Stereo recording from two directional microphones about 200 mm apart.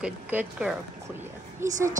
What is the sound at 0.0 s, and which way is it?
Speech, 5° right (ahead or behind).